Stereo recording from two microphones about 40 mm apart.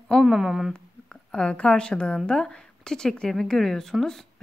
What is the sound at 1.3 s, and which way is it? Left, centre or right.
A woman's voice, left.